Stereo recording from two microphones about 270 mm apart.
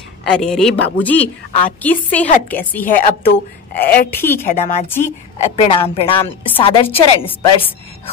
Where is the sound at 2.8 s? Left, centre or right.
Left.